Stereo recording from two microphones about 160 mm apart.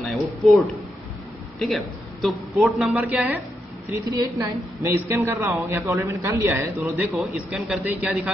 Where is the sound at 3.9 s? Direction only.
20° right (ahead or behind).